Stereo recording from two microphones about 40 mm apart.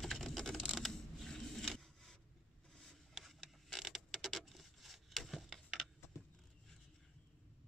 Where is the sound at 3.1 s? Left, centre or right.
Centre.